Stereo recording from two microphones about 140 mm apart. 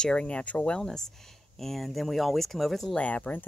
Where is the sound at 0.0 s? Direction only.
5° left (ahead or behind).